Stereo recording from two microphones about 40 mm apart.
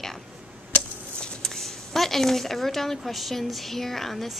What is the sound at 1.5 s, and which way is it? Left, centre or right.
A woman's voice, centre.